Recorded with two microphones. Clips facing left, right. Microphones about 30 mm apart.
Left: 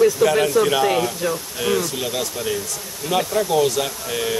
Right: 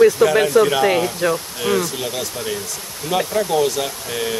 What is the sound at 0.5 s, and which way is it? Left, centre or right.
Speech, right.